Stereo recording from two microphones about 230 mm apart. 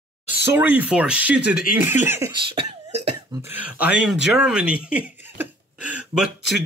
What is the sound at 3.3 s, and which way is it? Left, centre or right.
Speech, centre.